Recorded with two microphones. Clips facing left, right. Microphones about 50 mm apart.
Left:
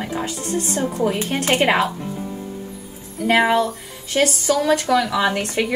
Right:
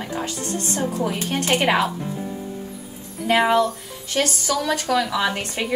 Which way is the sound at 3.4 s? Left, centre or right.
Centre.